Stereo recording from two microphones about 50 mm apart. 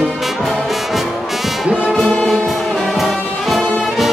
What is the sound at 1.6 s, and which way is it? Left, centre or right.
Brass instrument, right.